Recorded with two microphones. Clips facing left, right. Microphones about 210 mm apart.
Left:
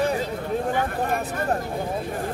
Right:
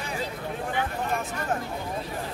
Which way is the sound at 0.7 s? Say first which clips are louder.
Left 4 dB; 50° left (ahead or behind).